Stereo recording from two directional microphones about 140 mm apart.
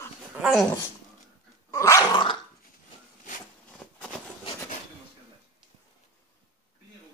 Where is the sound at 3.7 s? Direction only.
5° left (ahead or behind).